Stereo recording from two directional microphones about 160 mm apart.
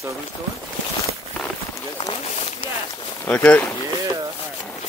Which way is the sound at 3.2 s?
10° left (ahead or behind).